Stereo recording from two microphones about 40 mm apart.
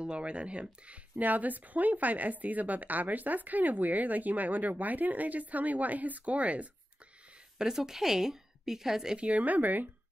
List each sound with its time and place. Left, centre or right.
0.0 s speech: right
7.5 s a woman's voice: centre
9.2 s speech: right